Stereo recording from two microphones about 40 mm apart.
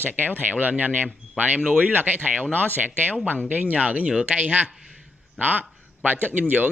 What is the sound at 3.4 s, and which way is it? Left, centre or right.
A man's voice, right.